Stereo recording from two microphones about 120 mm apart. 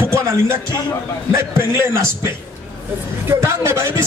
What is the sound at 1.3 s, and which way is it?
Speech, 20° right (ahead or behind).